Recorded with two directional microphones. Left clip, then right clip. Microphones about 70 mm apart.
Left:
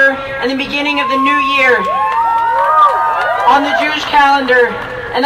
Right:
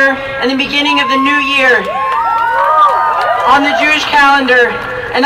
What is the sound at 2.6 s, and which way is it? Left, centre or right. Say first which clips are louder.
Run: right 1 dB; centre.